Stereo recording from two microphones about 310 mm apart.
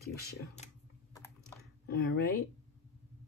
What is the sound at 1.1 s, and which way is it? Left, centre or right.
Typing, centre.